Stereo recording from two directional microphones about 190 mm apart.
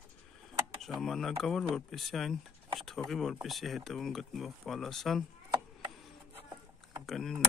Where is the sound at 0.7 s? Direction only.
Centre (ahead or behind).